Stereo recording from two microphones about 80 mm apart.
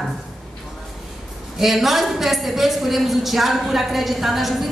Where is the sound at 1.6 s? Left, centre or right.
Centre.